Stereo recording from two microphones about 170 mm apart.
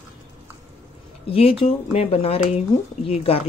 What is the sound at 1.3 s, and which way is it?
Speech, 35° left (ahead or behind).